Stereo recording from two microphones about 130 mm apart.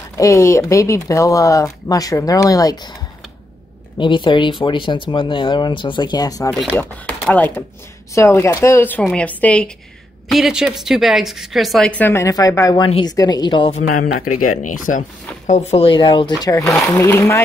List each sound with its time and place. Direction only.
0.2 s speech: 20° left (ahead or behind)
4.0 s speech: 40° left (ahead or behind)
6.7 s speech: 10° left (ahead or behind)
10.2 s a woman's voice: centre (ahead or behind)
11.9 s speech: 15° left (ahead or behind); by 13.7 s 40° left (ahead or behind)
14.7 s speech: 85° left; by 17.4 s 20° left (ahead or behind)